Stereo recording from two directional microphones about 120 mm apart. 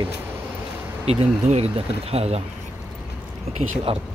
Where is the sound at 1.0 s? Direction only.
60° right (ahead or behind).